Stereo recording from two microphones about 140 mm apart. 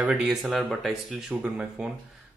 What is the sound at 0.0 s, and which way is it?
Speech, 5° right (ahead or behind).